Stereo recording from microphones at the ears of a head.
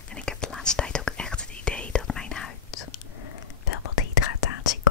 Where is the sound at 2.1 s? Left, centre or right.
Left.